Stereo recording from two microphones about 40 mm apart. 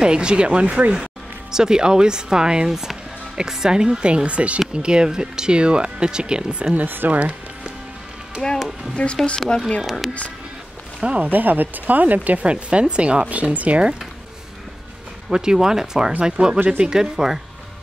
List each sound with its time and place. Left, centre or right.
0.0 s speech: right
1.5 s speech: centre
4.6 s speech: right
7.1 s speech: right
8.4 s speech: centre
11.0 s speech: right
11.3 s speech: right
12.4 s speech: right
15.3 s speech: centre
16.5 s speech: right
16.8 s speech: centre